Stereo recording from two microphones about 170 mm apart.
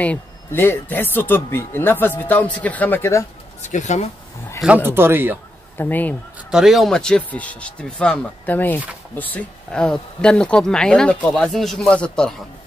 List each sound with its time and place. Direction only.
0.0 s speech: 10° left (ahead or behind)
3.6 s speech: 45° left (ahead or behind)
4.6 s speech: 10° right (ahead or behind)
5.8 s speech: 10° left (ahead or behind)
6.5 s speech: centre (ahead or behind)